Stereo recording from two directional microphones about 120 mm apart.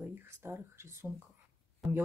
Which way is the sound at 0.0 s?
20° right (ahead or behind).